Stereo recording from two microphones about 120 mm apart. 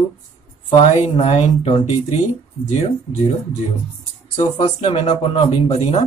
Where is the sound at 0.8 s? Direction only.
65° left (ahead or behind).